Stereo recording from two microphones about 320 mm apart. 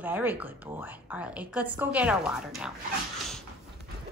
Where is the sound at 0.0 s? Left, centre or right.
Centre.